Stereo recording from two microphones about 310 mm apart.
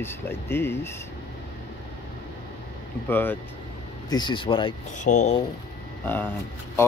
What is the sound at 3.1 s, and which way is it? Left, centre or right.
Speech, centre.